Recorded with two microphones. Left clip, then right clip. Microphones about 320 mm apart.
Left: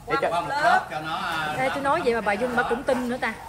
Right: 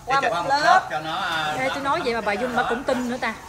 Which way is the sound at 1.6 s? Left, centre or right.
Centre.